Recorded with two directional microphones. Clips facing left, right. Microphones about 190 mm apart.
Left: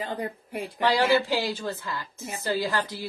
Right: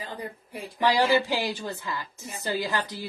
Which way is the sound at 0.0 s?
55° left (ahead or behind).